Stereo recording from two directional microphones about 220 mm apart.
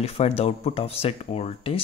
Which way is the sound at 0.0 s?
30° left (ahead or behind).